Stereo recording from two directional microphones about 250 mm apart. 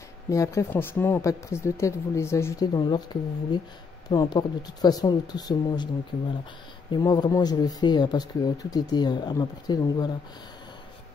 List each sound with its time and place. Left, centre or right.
0.3 s speech: centre
6.9 s speech: centre